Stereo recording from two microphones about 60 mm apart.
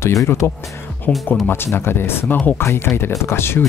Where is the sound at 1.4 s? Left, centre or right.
Left.